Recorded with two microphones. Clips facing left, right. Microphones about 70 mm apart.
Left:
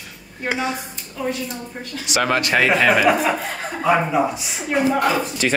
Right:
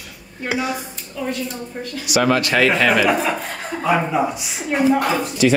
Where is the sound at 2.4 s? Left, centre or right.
Centre.